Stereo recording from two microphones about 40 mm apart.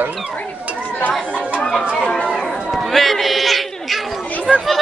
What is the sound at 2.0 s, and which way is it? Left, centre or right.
Speech, left.